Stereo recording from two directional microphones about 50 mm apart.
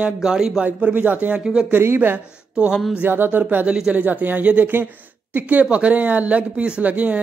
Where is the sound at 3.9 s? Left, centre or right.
Right.